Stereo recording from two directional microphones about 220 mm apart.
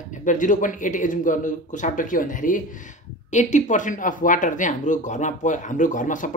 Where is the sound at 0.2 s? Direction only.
35° left (ahead or behind).